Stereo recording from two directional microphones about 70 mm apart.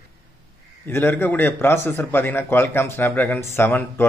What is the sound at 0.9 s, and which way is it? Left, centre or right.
A man's voice, left.